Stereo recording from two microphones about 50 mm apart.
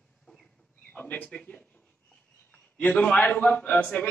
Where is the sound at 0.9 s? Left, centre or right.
Left.